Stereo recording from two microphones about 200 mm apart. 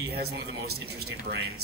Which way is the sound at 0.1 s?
55° right (ahead or behind).